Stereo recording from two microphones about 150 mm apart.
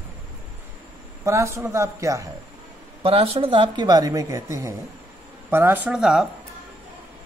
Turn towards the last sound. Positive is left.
turn(degrees=-5)  # may be behind; listen again after turning